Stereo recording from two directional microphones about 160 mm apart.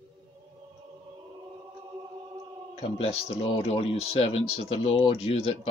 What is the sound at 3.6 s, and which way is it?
Speech, 40° left (ahead or behind).